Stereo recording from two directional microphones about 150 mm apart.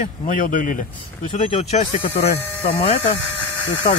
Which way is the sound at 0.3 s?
60° left (ahead or behind).